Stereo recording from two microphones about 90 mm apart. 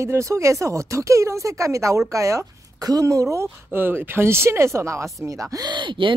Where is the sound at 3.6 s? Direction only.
25° right (ahead or behind); by 6.2 s 65° right (ahead or behind).